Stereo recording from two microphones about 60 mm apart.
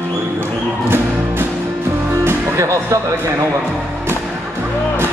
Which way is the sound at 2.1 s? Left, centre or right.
Right.